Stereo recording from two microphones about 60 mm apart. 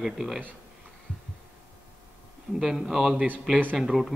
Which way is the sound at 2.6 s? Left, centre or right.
Centre.